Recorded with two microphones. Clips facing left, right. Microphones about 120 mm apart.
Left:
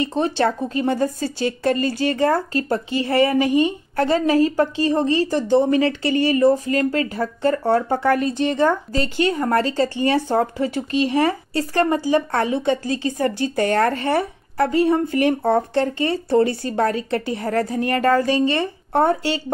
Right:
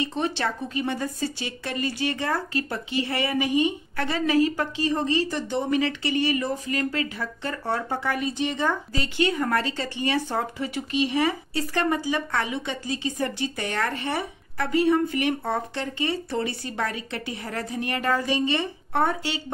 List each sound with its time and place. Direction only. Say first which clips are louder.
0.0 s speech: left 7 dB; 40° left (ahead or behind)
8.2 s speech: left 6 dB; 10° right (ahead or behind)
8.9 s speech: left 4 dB; 35° left (ahead or behind)